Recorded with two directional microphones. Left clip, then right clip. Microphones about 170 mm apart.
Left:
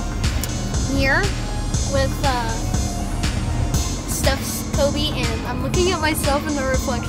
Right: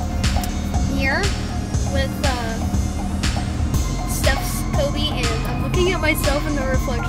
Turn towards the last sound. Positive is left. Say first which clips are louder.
# even
turn(degrees=20)  # may be behind; listen again after turning